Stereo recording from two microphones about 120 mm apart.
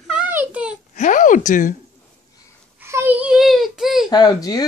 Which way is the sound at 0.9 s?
90° left.